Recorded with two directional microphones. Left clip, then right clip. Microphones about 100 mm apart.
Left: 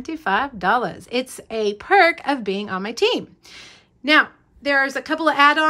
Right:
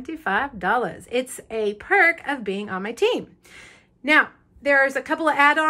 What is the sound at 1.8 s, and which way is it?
Speech, 30° left (ahead or behind).